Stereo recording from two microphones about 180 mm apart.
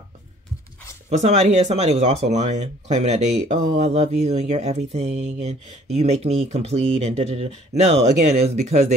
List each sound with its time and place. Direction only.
1.1 s speech: 35° right (ahead or behind)